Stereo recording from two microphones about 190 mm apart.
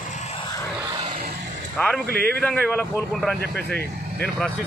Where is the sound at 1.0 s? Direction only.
25° right (ahead or behind).